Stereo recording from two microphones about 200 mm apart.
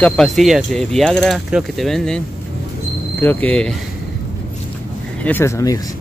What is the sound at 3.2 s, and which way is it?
Speech, 5° left (ahead or behind).